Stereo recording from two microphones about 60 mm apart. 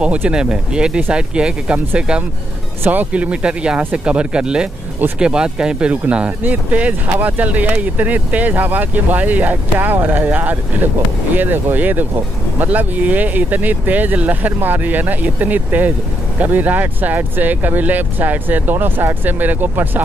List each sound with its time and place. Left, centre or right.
0.0 s speech: right
2.8 s speech: right